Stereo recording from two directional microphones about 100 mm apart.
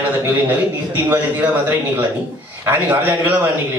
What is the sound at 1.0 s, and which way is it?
A man's voice, 15° right (ahead or behind).